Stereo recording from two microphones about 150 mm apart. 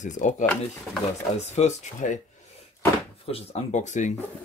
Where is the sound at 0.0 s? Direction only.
55° left (ahead or behind).